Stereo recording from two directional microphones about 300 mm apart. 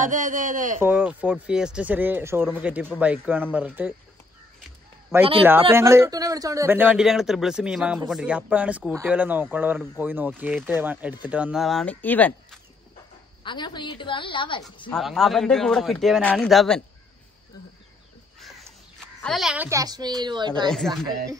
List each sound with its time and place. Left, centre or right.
0.0 s speech: right
0.7 s speech: centre
5.1 s a man's voice: centre
13.4 s a woman's voice: centre
14.9 s speech: centre
18.4 s speech: centre